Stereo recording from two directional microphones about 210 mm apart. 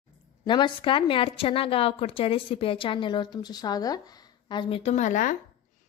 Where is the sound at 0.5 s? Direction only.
20° left (ahead or behind).